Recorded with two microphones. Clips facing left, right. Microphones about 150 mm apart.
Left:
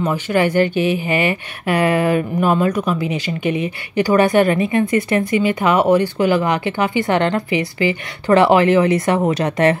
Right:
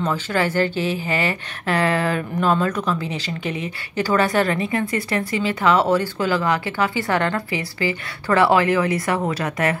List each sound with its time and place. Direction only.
0.0 s speech: 15° left (ahead or behind)